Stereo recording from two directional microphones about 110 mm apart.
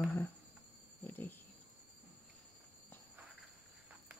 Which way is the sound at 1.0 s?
15° left (ahead or behind).